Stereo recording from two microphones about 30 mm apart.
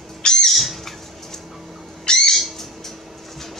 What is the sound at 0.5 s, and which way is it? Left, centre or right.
Bird, centre.